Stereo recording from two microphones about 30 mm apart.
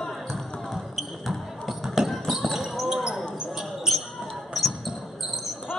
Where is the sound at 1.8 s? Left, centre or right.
Centre.